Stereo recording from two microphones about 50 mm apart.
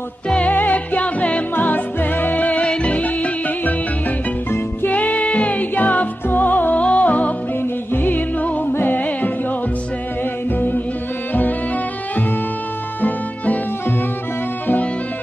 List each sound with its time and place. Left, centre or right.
0.5 s music: left
1.5 s music: left
2.6 s music: left
13.0 s music: left